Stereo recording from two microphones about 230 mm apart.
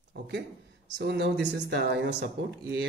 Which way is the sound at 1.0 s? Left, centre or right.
Right.